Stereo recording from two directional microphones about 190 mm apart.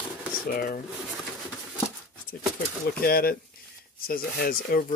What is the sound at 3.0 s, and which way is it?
Speech, 50° left (ahead or behind).